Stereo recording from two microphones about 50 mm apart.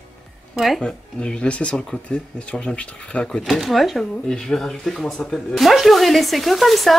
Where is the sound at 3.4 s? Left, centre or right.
Centre.